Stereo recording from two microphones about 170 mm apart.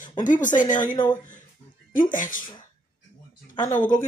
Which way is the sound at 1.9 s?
50° left (ahead or behind).